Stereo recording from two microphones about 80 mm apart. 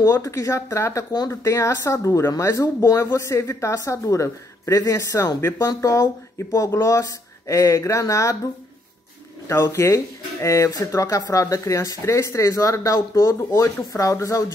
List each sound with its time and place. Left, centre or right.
0.1 s speech: left
9.5 s speech: left